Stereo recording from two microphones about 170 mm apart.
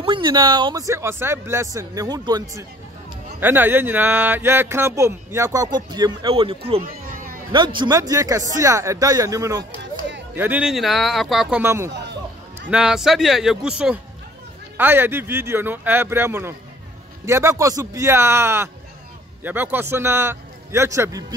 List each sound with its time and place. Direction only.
0.0 s speech: 30° right (ahead or behind)
3.3 s speech: 10° right (ahead or behind)
11.6 s speech: 15° right (ahead or behind)
11.9 s a sound: 85° right
12.6 s speech: 5° right (ahead or behind); by 21.4 s 20° right (ahead or behind)